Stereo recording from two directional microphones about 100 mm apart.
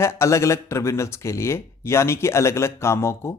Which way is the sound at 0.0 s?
30° left (ahead or behind).